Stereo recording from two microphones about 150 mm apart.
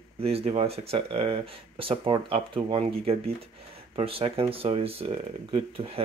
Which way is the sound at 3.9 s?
40° right (ahead or behind).